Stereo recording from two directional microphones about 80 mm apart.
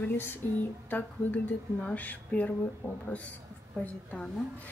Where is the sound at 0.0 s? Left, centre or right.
Left.